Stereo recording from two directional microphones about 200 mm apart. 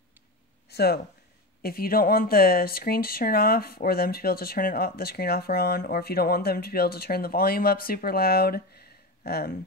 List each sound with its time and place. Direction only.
0.7 s speech: 50° left (ahead or behind)